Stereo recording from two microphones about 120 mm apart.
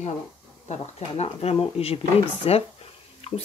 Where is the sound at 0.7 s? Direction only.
65° left (ahead or behind).